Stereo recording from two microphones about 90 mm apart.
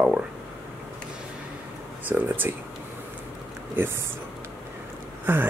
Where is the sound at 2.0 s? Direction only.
20° right (ahead or behind).